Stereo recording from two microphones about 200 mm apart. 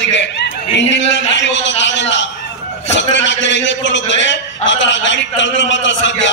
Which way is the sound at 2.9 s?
65° left (ahead or behind).